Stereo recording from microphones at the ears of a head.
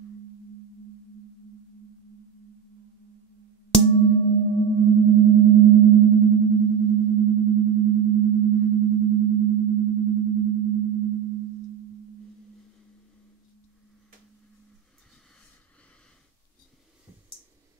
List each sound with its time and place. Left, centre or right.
0.0 s singing bowl: right